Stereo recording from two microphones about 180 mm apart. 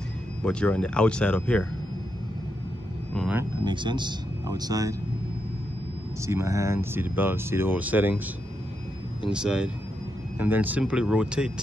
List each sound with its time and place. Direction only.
0.5 s speech: 5° left (ahead or behind)
3.6 s speech: 25° right (ahead or behind)
6.2 s speech: 15° right (ahead or behind)
9.3 s speech: 5° right (ahead or behind)